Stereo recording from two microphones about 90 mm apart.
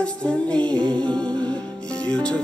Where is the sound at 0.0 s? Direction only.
15° left (ahead or behind).